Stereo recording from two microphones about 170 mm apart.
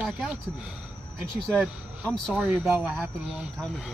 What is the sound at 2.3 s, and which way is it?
A man's voice, 5° right (ahead or behind).